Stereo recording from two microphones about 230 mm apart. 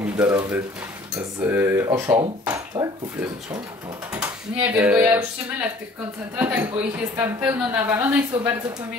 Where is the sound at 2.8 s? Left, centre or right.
Right.